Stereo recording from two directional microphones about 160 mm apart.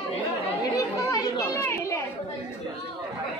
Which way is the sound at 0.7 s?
20° left (ahead or behind).